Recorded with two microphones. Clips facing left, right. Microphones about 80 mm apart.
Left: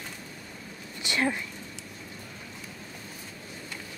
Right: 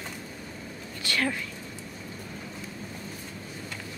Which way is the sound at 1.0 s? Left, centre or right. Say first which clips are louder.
Left 1 dB; left.